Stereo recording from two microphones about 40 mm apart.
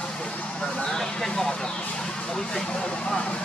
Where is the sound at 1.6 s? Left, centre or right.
Centre.